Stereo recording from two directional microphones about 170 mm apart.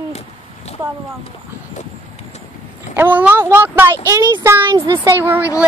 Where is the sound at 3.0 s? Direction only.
10° right (ahead or behind).